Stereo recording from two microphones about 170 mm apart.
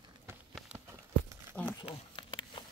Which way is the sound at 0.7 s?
15° right (ahead or behind).